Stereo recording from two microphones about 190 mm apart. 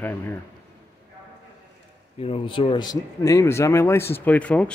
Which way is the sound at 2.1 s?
30° left (ahead or behind).